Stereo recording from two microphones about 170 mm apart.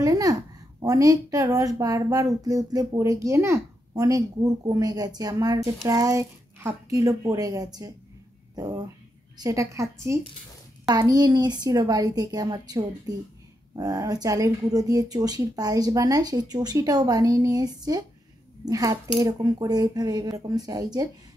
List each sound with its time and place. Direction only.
0.0 s a woman's voice: 20° right (ahead or behind)